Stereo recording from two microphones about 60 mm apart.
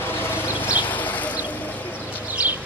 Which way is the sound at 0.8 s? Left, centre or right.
Left.